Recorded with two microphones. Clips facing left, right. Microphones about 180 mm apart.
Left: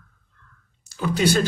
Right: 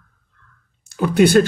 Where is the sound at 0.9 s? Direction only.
55° right (ahead or behind).